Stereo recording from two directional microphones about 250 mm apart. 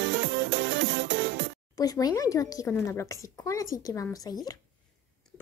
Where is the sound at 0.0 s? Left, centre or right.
Right.